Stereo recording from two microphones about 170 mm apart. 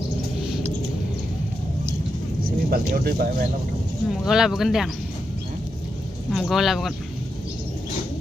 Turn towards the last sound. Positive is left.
turn(degrees=0)  # may be behind; listen again after turning